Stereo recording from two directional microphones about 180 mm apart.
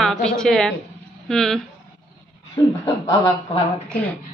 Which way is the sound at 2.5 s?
20° left (ahead or behind).